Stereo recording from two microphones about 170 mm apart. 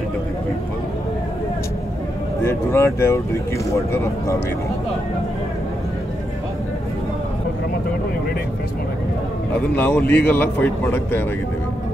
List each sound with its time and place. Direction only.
2.4 s speech: 15° left (ahead or behind)
9.8 s speech: 10° left (ahead or behind)